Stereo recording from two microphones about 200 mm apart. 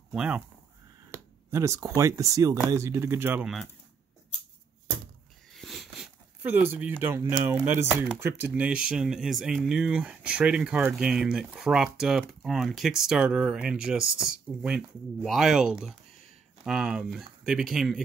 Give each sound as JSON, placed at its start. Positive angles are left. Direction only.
{"t": 0.1, "sound": "speech", "side_deg": -5}
{"t": 1.1, "sound": "speech", "side_deg": -15}
{"t": 5.5, "sound": "speech", "side_deg": 0}